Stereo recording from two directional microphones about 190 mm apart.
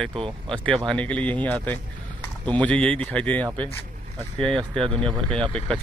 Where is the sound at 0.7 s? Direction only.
5° left (ahead or behind).